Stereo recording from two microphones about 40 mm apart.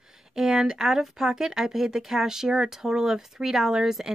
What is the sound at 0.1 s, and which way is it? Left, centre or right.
Speech, centre.